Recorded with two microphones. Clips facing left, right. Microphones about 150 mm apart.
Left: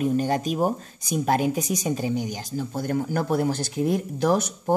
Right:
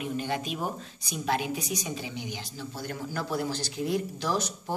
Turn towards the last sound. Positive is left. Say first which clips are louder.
# left 8 dB
turn(degrees=55)  # may be behind; listen again after turning